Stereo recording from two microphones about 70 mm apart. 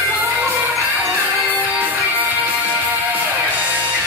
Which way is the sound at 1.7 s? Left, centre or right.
Right.